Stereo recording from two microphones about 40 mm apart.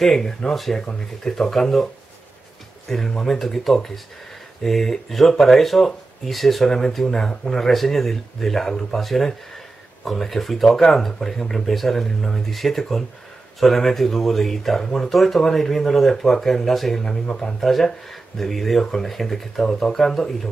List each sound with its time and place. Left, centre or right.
0.0 s speech: centre
3.1 s speech: centre
7.7 s speech: centre